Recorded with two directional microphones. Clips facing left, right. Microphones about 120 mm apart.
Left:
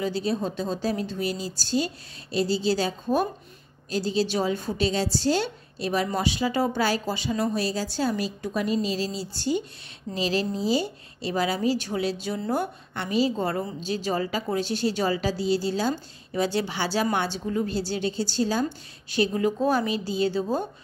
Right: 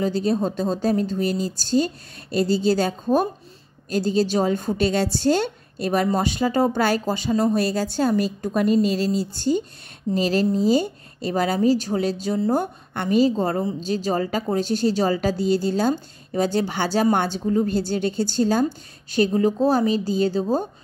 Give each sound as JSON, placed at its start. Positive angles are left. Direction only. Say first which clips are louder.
{"t": 0.0, "sound": "a woman's voice", "louder": "right 5 dB", "side_deg": -45}